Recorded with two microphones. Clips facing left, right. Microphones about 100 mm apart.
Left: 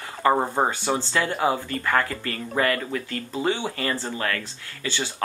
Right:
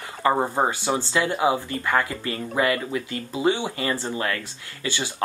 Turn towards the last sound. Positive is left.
turn(degrees=-15)  # may be behind; listen again after turning